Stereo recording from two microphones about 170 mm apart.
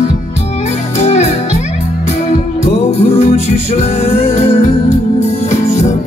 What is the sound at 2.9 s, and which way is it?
Music, 40° left (ahead or behind).